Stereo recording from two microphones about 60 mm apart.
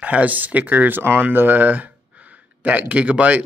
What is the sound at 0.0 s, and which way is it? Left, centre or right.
Speech, right.